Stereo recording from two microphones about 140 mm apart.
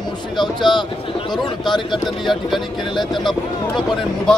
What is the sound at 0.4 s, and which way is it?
Speech, 35° left (ahead or behind).